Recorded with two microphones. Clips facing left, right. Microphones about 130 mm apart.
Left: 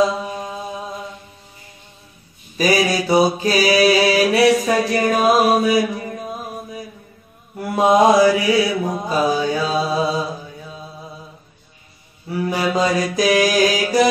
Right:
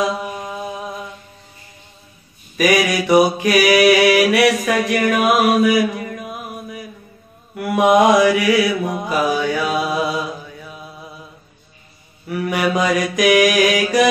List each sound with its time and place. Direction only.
2.5 s mantra: 30° left (ahead or behind)
12.3 s mantra: 30° left (ahead or behind)